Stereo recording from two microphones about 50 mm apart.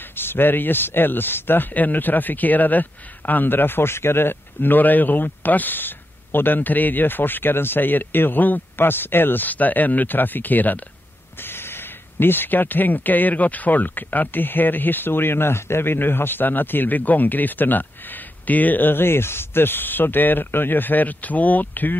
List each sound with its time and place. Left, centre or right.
0.1 s speech: left
11.3 s speech: left